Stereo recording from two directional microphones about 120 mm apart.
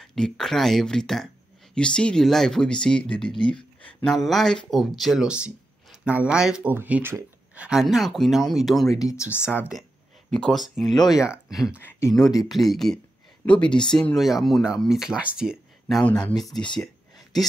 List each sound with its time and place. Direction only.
0.0 s speech: 5° left (ahead or behind)
3.3 s speech: 45° left (ahead or behind)
3.8 s speech: 5° left (ahead or behind)
8.9 s speech: 25° left (ahead or behind)
9.5 s speech: 10° right (ahead or behind)
10.3 s speech: 5° left (ahead or behind)
16.0 s speech: 10° left (ahead or behind)
16.7 s a sound: centre (ahead or behind)